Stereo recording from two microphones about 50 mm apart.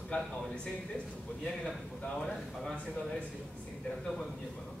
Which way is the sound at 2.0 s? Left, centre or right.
Centre.